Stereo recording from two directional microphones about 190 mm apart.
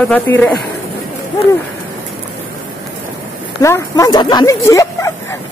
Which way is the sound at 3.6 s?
15° left (ahead or behind).